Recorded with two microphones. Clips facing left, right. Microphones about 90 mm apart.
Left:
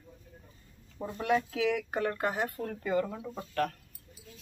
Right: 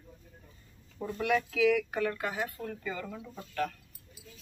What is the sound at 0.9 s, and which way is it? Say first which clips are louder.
Speech: right 1 dB; 20° left (ahead or behind).